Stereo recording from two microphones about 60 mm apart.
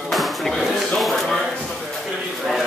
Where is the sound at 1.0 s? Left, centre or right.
Centre.